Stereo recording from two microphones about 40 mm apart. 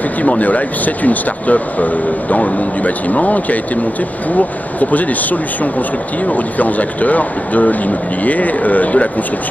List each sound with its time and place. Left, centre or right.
0.2 s speech: left